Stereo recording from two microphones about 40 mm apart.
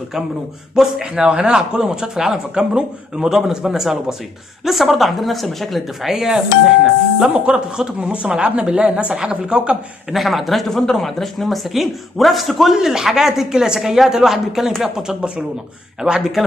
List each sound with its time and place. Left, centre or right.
0.8 s a man's voice: centre
6.0 s speech: centre
7.3 s a man's voice: right
10.1 s speech: centre
12.7 s speech: centre
16.0 s a man's voice: right
16.4 s speech: centre